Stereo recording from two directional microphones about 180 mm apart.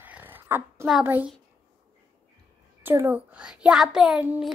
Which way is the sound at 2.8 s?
10° right (ahead or behind).